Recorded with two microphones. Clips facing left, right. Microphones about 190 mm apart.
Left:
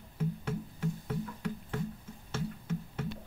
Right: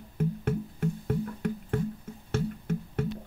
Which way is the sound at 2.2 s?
55° right (ahead or behind).